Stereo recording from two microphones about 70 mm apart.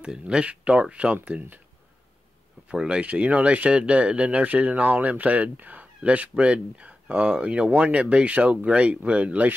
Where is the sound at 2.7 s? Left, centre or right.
Centre.